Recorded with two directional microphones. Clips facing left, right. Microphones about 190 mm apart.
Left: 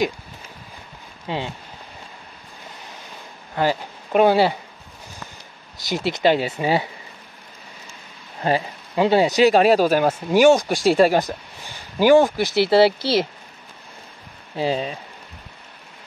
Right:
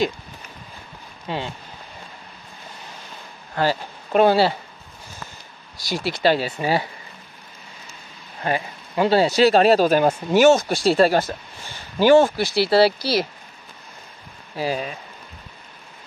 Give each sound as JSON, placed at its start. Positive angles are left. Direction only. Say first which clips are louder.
{"t": 1.2, "sound": "speech", "louder": "left 1 dB", "side_deg": 15}
{"t": 3.5, "sound": "speech", "louder": "left 1 dB", "side_deg": 15}
{"t": 5.8, "sound": "speech", "louder": "left 2 dB", "side_deg": 20}
{"t": 8.4, "sound": "speech", "louder": "left 3 dB", "side_deg": 30}
{"t": 8.9, "sound": "speech", "louder": "left 1 dB", "side_deg": 15}
{"t": 14.5, "sound": "speech", "louder": "left 2 dB", "side_deg": 25}